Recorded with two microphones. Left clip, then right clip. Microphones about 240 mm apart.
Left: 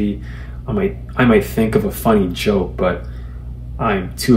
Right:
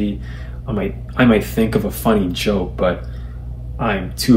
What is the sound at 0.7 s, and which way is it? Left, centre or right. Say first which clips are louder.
Speech: left 3 dB; centre.